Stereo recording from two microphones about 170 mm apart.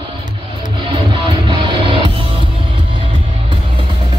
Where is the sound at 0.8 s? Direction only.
30° right (ahead or behind).